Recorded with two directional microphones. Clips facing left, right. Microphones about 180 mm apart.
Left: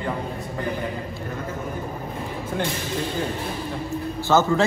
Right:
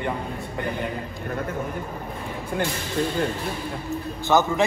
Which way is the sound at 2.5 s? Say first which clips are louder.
Right 1 dB; 5° right (ahead or behind).